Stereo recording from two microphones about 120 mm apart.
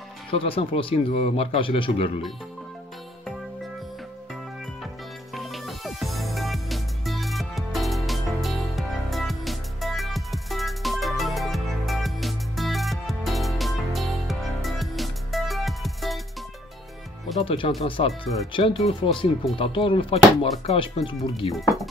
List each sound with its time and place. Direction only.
0.3 s a man's voice: 50° left (ahead or behind)
5.3 s music: centre (ahead or behind)
17.4 s a man's voice: 50° left (ahead or behind)
21.5 s speech: centre (ahead or behind)